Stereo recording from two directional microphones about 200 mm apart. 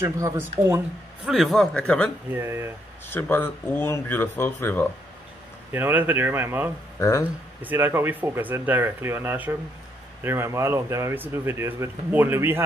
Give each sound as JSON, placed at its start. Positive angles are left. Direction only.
{"t": 0.0, "sound": "speech", "side_deg": -15}
{"t": 1.2, "sound": "speech", "side_deg": 0}
{"t": 2.3, "sound": "speech", "side_deg": -15}
{"t": 3.1, "sound": "speech", "side_deg": 10}
{"t": 5.7, "sound": "speech", "side_deg": -10}
{"t": 7.0, "sound": "speech", "side_deg": 15}
{"t": 7.6, "sound": "speech", "side_deg": -10}